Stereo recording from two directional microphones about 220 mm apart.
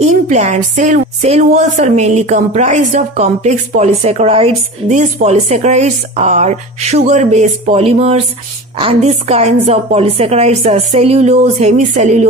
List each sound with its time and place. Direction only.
0.0 s speech: 30° right (ahead or behind)